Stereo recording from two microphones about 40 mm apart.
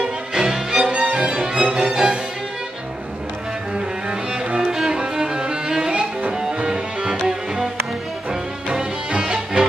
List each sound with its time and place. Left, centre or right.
0.0 s music: centre
3.7 s cello: right
4.8 s music: centre